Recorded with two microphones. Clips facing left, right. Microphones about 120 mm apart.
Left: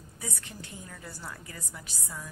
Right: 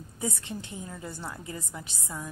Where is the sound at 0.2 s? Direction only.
25° right (ahead or behind).